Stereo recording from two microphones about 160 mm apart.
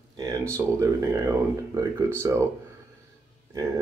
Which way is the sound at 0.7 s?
20° right (ahead or behind).